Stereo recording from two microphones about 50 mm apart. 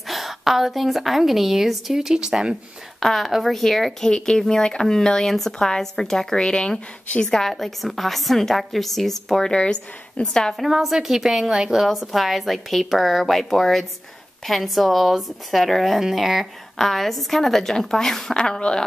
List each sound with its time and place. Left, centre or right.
0.1 s a woman's voice: centre
2.1 s speech: centre
3.0 s a woman's voice: centre
9.5 s speech: centre
10.5 s a woman's voice: centre
18.4 s speech: centre